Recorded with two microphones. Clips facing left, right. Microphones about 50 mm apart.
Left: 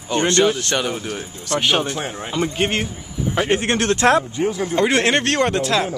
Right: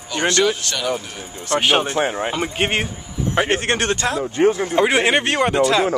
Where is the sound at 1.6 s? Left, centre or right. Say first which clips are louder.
Right 3 dB; right.